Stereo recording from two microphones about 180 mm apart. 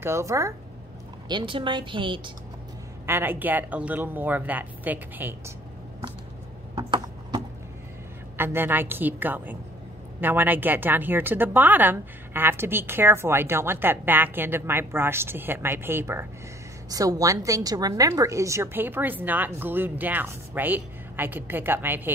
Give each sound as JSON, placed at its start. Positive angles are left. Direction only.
{"t": 0.0, "sound": "a woman's voice", "side_deg": -15}
{"t": 1.3, "sound": "speech", "side_deg": -30}
{"t": 3.1, "sound": "a woman's voice", "side_deg": -10}
{"t": 6.7, "sound": "a sound", "side_deg": -25}
{"t": 8.4, "sound": "a woman's voice", "side_deg": -10}